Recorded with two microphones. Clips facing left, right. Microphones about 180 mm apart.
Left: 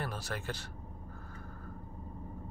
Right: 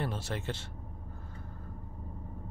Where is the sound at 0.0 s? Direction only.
25° right (ahead or behind).